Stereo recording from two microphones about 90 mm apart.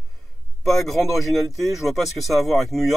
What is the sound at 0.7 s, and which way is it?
Speech, centre (ahead or behind).